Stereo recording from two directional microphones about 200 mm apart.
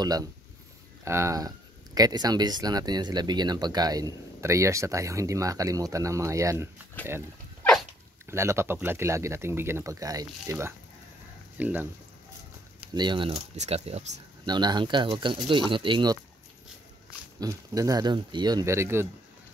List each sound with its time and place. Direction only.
0.0 s speech: 20° right (ahead or behind)
7.0 s speech: 10° left (ahead or behind)
8.3 s speech: 15° right (ahead or behind)
12.9 s speech: 25° right (ahead or behind)
14.4 s speech: 20° right (ahead or behind)
17.4 s speech: 15° right (ahead or behind)